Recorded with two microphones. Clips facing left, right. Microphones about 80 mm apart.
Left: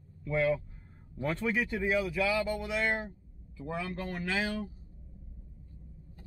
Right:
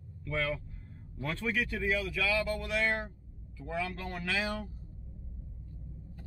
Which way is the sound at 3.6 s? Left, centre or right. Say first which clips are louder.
Even; left.